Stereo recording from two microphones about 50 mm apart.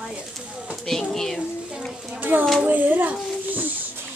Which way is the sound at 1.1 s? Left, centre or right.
Centre.